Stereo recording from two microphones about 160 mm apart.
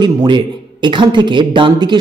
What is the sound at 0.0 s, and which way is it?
Speech, 25° right (ahead or behind).